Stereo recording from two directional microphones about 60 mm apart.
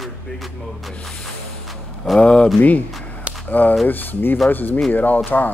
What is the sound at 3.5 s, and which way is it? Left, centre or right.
Speech, left.